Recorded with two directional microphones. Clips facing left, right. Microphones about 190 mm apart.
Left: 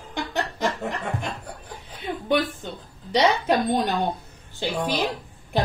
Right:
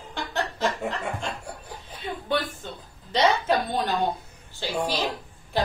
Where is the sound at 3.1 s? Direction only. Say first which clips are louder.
Left 2 dB; 20° left (ahead or behind).